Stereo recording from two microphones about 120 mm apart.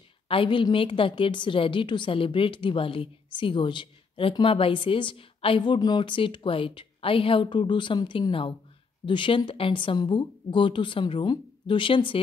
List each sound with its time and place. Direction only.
0.3 s a woman's voice: 45° left (ahead or behind)